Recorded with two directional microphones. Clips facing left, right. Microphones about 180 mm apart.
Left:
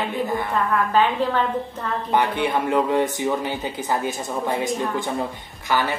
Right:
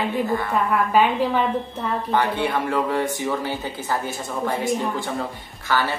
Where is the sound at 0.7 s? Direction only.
10° right (ahead or behind).